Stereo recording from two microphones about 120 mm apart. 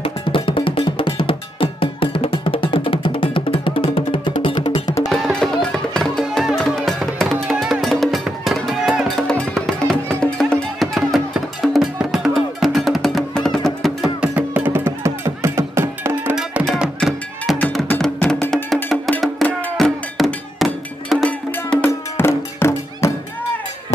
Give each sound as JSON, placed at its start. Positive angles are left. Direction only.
{"t": 0.0, "sound": "music", "side_deg": 45}
{"t": 5.1, "sound": "music", "side_deg": 0}
{"t": 14.2, "sound": "music", "side_deg": -15}
{"t": 16.7, "sound": "music", "side_deg": -5}
{"t": 17.8, "sound": "music", "side_deg": 5}
{"t": 21.3, "sound": "music", "side_deg": 10}